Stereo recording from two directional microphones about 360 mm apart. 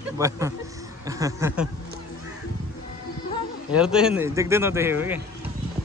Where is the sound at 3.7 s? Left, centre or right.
Centre.